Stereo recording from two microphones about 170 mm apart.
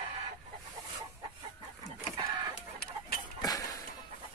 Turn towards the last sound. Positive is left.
turn(degrees=20)  # may be behind; listen again after turning